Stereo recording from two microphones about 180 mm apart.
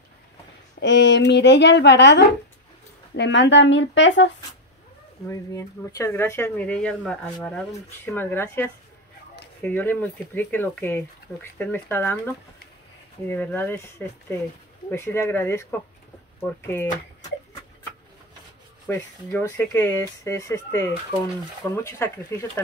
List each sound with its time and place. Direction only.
0.7 s a woman's voice: 75° left (ahead or behind)
5.3 s speech: 15° left (ahead or behind)
18.9 s speech: 15° left (ahead or behind)